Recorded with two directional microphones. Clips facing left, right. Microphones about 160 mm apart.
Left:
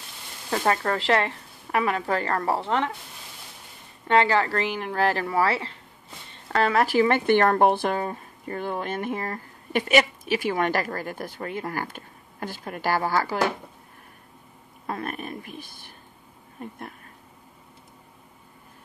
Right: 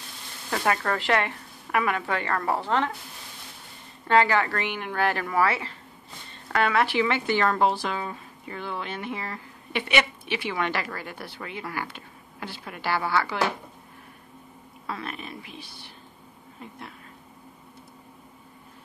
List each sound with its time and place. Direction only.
0.5 s speech: 30° left (ahead or behind)
4.1 s speech: 30° left (ahead or behind)
14.9 s speech: 50° left (ahead or behind)